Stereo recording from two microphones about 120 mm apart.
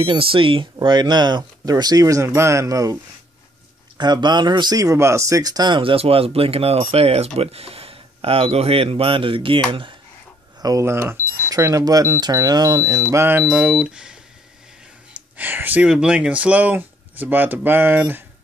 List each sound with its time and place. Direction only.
0.0 s speech: 50° right (ahead or behind); by 3.0 s 30° right (ahead or behind)
4.0 s speech: 35° right (ahead or behind)
5.8 s speech: 50° right (ahead or behind)
10.6 s speech: 25° right (ahead or behind)
13.5 s speech: 10° right (ahead or behind)
15.3 s speech: 15° right (ahead or behind)